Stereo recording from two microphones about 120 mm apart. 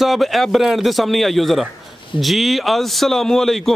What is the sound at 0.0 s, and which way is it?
A man's voice, centre (ahead or behind).